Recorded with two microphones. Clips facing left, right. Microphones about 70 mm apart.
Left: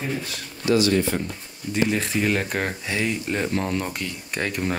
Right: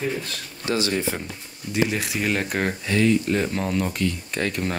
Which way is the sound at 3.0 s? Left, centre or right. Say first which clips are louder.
Right 7 dB; centre.